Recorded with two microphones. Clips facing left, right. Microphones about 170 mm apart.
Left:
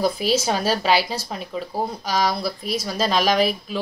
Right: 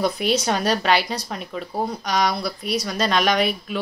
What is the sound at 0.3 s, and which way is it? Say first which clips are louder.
A woman's voice: even; 5° left (ahead or behind).